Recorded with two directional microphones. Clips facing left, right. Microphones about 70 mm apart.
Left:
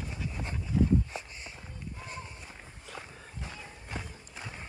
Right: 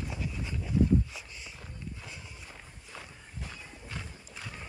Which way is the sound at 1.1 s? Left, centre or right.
Left.